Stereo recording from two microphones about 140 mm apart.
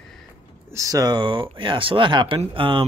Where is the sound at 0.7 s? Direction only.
25° right (ahead or behind).